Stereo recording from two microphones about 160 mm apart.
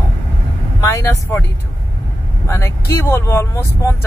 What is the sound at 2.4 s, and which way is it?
Speech, 15° left (ahead or behind).